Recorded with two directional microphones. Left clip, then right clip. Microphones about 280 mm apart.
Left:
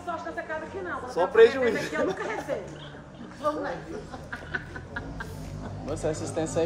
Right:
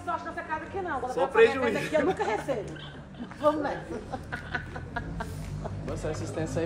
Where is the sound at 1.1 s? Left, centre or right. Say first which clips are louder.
Left 3 dB; centre.